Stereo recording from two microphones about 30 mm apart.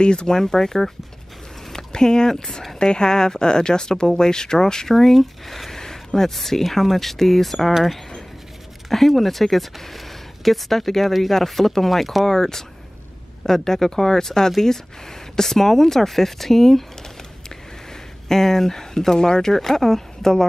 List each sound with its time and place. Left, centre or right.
0.0 s speech: left
0.3 s speech: centre
4.8 s speech: centre
5.8 s a sound: centre
6.3 s speech: centre
8.8 s speech: centre
12.3 s speech: centre
18.3 s speech: centre
19.5 s speech: centre